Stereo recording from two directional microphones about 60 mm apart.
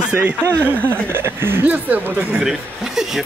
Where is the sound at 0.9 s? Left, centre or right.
Right.